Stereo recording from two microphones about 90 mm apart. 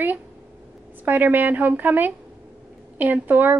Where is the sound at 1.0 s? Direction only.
20° right (ahead or behind).